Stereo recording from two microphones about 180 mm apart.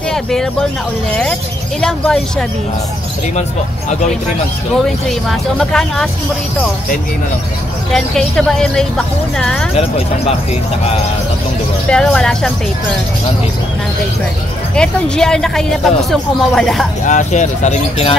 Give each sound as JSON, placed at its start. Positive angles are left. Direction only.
{"t": 0.1, "sound": "speech", "side_deg": 5}
{"t": 1.8, "sound": "speech", "side_deg": 0}
{"t": 4.8, "sound": "speech", "side_deg": 5}
{"t": 7.9, "sound": "speech", "side_deg": 0}
{"t": 9.8, "sound": "speech", "side_deg": 35}
{"t": 11.9, "sound": "speech", "side_deg": 5}
{"t": 14.8, "sound": "speech", "side_deg": 5}
{"t": 17.0, "sound": "speech", "side_deg": 45}